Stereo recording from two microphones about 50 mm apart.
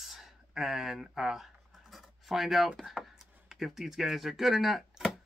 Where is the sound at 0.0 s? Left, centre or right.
Centre.